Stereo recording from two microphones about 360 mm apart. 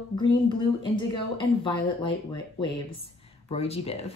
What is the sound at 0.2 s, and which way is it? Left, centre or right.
A woman's voice, centre.